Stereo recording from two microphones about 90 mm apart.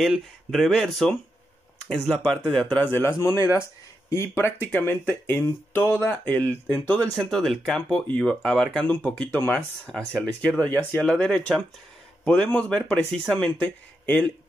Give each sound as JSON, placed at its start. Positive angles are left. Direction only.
{"t": 0.0, "sound": "speech", "side_deg": 0}
{"t": 2.8, "sound": "speech", "side_deg": 20}
{"t": 3.2, "sound": "speech", "side_deg": 35}
{"t": 7.2, "sound": "speech", "side_deg": 0}
{"t": 11.0, "sound": "speech", "side_deg": 10}
{"t": 13.6, "sound": "speech", "side_deg": 15}